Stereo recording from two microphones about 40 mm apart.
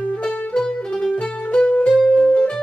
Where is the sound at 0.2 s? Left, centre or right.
Centre.